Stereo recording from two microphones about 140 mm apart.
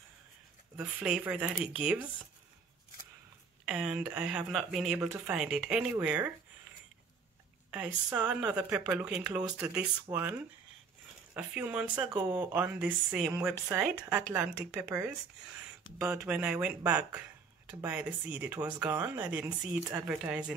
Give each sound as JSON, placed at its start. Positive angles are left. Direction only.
{"t": 0.7, "sound": "speech", "side_deg": -10}
{"t": 3.6, "sound": "speech", "side_deg": -5}
{"t": 7.7, "sound": "speech", "side_deg": -10}
{"t": 11.3, "sound": "speech", "side_deg": -10}
{"t": 16.3, "sound": "speech", "side_deg": -10}